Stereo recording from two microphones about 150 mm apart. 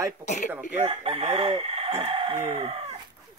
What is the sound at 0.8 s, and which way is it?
Chicken, 40° right (ahead or behind).